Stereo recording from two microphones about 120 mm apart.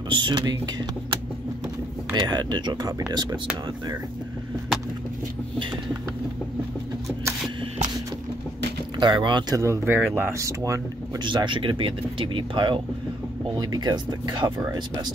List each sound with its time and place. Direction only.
0.1 s speech: 40° right (ahead or behind)
9.0 s speech: 40° right (ahead or behind)
9.6 s speech: 25° right (ahead or behind)
11.2 s speech: 40° right (ahead or behind)